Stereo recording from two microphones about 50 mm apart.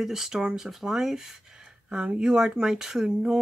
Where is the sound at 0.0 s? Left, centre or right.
Centre.